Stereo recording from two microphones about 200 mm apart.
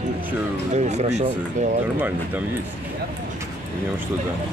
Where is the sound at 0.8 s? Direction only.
35° right (ahead or behind).